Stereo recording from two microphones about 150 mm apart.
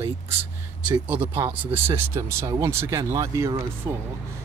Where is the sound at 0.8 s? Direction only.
10° right (ahead or behind).